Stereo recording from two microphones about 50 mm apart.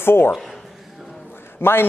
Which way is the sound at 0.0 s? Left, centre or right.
Left.